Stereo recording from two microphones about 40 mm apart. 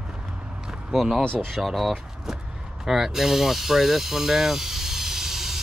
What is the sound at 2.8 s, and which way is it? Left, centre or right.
Snake, centre.